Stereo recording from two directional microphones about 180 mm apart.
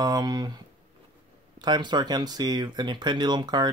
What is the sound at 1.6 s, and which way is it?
Speech, 25° right (ahead or behind).